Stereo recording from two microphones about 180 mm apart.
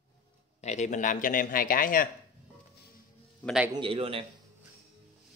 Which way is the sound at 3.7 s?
30° right (ahead or behind).